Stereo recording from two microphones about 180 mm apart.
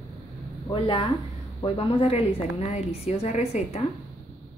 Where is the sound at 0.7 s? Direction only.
25° left (ahead or behind).